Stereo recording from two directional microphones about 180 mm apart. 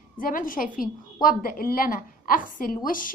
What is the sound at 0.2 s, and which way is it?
A woman's voice, 50° left (ahead or behind).